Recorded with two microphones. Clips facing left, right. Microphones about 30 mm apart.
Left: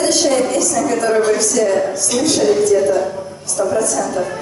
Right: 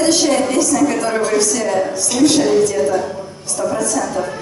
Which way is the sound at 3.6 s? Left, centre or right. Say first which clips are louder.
Left 3 dB; centre.